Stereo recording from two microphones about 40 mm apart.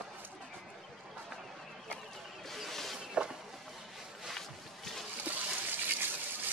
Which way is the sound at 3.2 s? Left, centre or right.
Right.